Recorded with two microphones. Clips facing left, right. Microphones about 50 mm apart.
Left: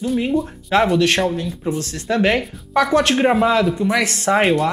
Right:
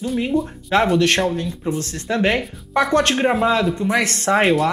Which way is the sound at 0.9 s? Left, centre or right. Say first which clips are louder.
Even; left.